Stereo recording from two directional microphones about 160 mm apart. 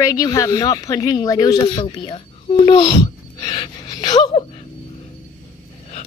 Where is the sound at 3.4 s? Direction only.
25° left (ahead or behind).